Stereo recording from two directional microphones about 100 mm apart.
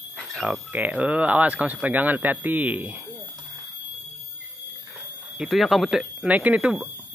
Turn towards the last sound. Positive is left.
turn(degrees=-15)  # may be behind; listen again after turning